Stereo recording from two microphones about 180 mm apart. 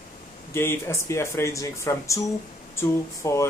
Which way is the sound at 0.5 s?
15° left (ahead or behind).